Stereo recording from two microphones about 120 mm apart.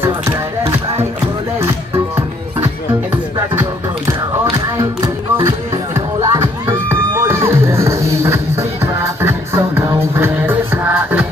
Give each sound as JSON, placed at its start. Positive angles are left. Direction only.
{"t": 4.6, "sound": "music", "side_deg": -25}